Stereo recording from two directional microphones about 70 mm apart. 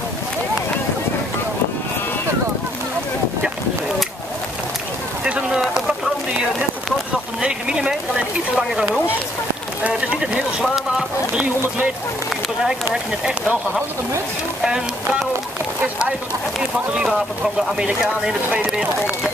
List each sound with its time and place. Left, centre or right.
5.2 s a sound: centre
7.4 s speech: centre
12.9 s speech: centre
14.6 s speech: centre
17.7 s speech: centre